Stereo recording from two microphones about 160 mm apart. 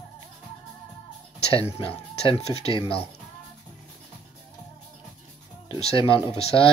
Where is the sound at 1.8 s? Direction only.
40° left (ahead or behind).